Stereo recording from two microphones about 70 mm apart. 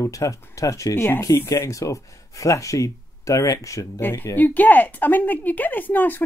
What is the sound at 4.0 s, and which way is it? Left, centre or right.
Speech, left.